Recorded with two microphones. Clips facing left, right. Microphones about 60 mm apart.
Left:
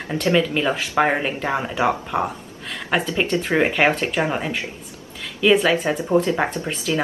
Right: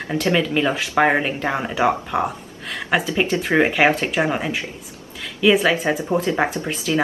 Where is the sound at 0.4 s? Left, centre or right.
Centre.